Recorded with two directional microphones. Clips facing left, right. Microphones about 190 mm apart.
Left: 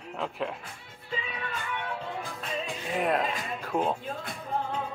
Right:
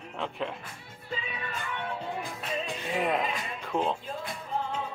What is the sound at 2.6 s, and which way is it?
Music, centre (ahead or behind).